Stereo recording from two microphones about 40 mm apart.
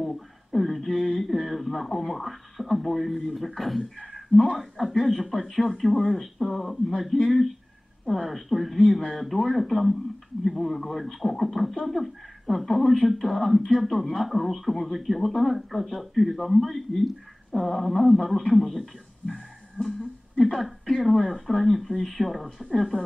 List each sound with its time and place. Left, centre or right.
0.0 s a sound: centre
3.3 s speech: centre
19.8 s speech: right
20.3 s speech: centre
22.9 s speech: left